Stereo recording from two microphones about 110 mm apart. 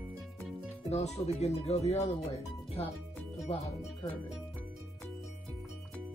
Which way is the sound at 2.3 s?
70° left (ahead or behind).